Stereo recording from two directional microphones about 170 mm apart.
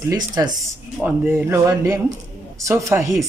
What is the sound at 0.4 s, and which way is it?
Speech, 20° right (ahead or behind).